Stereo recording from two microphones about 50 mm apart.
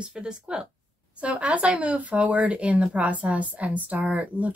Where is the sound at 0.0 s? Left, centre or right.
Centre.